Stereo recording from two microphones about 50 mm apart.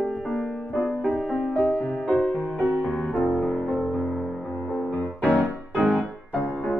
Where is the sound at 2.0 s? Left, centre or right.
Left.